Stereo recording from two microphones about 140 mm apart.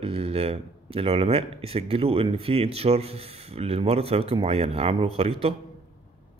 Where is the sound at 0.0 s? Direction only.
45° right (ahead or behind).